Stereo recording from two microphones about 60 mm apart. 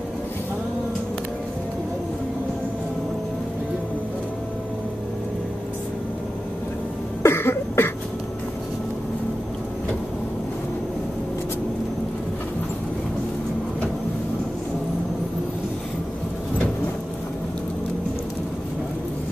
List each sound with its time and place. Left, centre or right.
7.2 s cough: left